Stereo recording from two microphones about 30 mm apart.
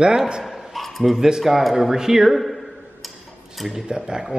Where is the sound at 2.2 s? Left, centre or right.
Centre.